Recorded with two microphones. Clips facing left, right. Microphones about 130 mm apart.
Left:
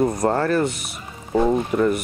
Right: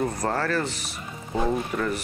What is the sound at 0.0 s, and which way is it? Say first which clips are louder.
Speech: left 6 dB; 25° left (ahead or behind).